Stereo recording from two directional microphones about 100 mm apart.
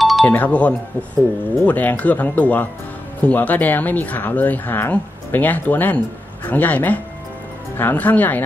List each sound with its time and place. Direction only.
0.2 s speech: 15° left (ahead or behind)